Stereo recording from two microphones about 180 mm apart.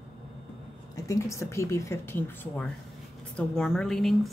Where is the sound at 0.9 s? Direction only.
20° left (ahead or behind).